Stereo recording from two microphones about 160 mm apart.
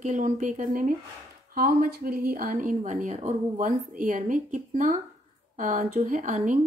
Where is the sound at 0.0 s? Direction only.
50° right (ahead or behind).